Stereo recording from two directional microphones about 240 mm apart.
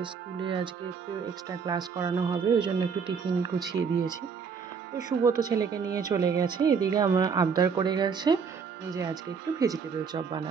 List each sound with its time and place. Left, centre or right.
0.0 s speech: right
1.7 s a woman's voice: centre
4.9 s a woman's voice: centre